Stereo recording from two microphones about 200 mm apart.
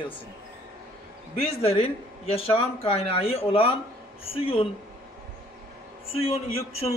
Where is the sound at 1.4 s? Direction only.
30° left (ahead or behind).